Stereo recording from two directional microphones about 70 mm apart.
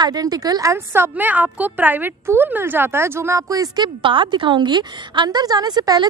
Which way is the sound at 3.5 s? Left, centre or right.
Right.